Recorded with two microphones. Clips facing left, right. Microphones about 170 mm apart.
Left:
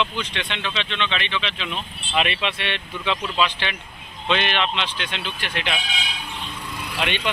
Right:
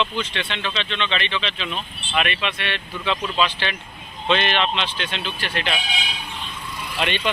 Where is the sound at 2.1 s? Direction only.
25° left (ahead or behind).